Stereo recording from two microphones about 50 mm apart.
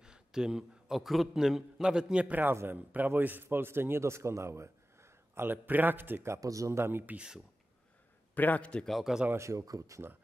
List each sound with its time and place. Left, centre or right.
0.0 s a man's voice: centre
2.2 s a man's voice: right
3.4 s speech: right
5.5 s a man's voice: right
6.2 s speech: right
6.8 s a man's voice: right
8.4 s a man's voice: left
9.1 s speech: centre
9.4 s speech: right